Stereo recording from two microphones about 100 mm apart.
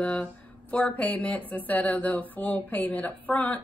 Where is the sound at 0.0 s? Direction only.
10° left (ahead or behind).